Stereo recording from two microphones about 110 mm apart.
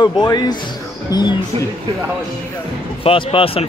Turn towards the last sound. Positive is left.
turn(degrees=60)  # may be behind; listen again after turning